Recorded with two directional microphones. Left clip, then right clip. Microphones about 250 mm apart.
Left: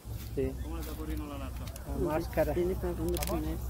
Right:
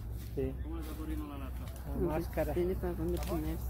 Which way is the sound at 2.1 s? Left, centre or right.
Centre.